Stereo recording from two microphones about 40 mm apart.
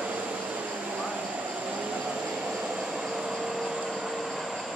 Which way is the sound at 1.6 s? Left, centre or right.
Right.